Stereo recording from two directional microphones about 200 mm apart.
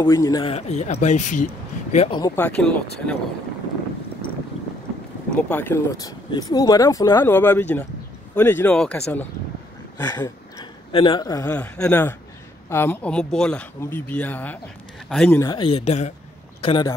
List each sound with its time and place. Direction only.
0.0 s a man's voice: 15° left (ahead or behind); by 2.0 s 40° left (ahead or behind)
2.0 s a man's voice: 25° left (ahead or behind)
2.3 s speech: 5° left (ahead or behind)
5.3 s speech: 10° left (ahead or behind)
15.3 s a man's voice: 20° left (ahead or behind)